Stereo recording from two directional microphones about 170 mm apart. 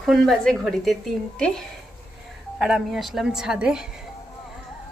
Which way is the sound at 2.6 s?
5° right (ahead or behind).